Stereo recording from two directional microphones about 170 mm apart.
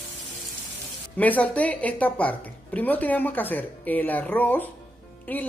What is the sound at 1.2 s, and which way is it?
Speech, 10° left (ahead or behind).